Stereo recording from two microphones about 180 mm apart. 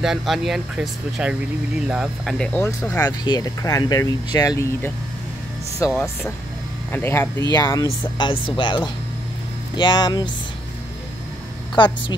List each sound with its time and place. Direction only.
0.0 s speech: centre (ahead or behind); by 4.9 s 15° left (ahead or behind)
6.9 s speech: 10° left (ahead or behind)
11.7 s speech: 25° left (ahead or behind)